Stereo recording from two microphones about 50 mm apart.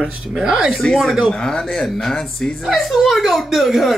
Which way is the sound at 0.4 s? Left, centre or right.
Centre.